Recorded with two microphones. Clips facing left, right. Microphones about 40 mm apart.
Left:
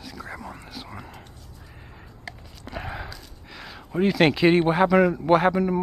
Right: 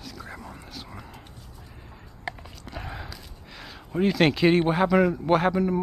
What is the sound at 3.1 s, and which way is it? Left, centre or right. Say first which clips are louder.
Speech: left 1 dB; centre.